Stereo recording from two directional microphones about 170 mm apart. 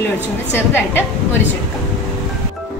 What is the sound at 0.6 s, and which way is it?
Speech, 15° left (ahead or behind).